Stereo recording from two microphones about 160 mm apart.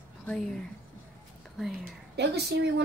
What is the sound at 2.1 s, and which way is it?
Speech, 90° right.